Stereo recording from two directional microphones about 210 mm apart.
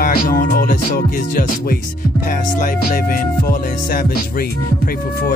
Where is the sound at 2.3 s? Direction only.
40° left (ahead or behind).